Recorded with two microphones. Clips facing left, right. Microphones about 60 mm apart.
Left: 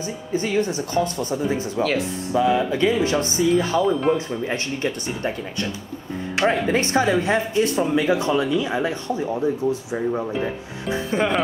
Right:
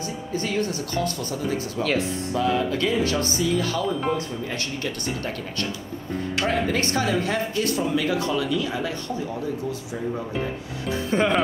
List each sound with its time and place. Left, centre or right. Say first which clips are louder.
0.0 s speech: left 3 dB; left
1.8 s speech: left 2 dB; centre
2.3 s speech: left 4 dB; centre
3.8 s speech: left 5 dB; centre
4.5 s speech: left 4 dB; left
11.1 s speech: right 1 dB; centre